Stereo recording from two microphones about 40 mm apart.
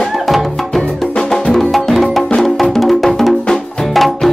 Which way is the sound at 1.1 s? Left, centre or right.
Centre.